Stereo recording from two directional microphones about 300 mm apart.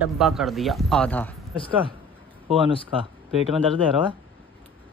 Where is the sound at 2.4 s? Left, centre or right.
Centre.